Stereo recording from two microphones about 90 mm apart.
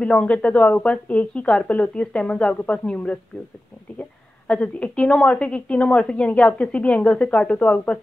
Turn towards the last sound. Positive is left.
turn(degrees=15)  # may be behind; listen again after turning